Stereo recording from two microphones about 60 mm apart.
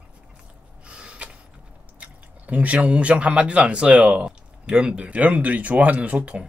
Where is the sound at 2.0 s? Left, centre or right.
Right.